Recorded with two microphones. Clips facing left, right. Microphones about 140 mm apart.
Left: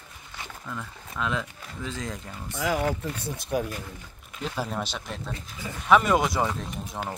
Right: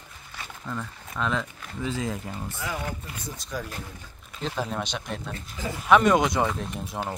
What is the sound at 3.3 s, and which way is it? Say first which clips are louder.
Speech: left 7 dB; 55° left (ahead or behind).